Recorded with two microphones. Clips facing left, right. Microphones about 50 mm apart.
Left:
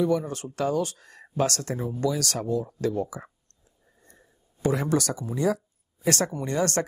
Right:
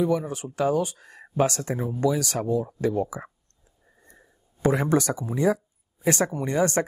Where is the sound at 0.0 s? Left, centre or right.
Centre.